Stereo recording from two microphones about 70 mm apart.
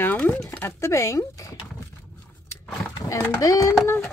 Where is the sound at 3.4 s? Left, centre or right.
Left.